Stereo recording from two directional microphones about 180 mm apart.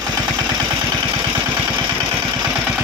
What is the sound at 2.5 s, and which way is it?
Vehicle, 5° right (ahead or behind).